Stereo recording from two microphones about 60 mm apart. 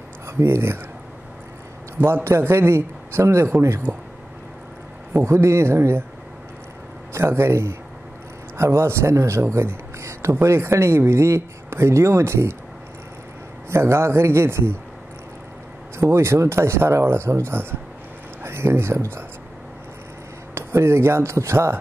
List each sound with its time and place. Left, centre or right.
0.3 s speech: right
2.0 s speech: right
5.1 s speech: right
7.2 s speech: right
13.7 s speech: right
16.0 s speech: right
20.5 s speech: right